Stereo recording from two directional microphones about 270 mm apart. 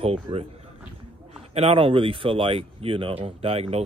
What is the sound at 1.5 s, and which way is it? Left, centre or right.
Speech, right.